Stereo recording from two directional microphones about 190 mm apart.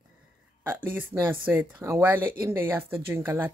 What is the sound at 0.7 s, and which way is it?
Speech, 10° right (ahead or behind).